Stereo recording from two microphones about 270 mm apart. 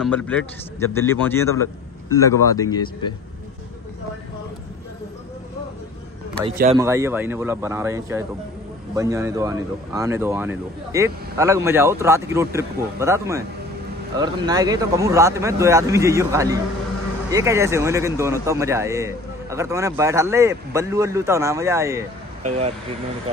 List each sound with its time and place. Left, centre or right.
0.0 s a man's voice: centre
6.8 s a man's voice: centre
22.4 s speech: right